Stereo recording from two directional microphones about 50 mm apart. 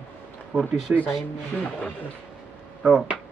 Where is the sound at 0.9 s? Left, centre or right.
Right.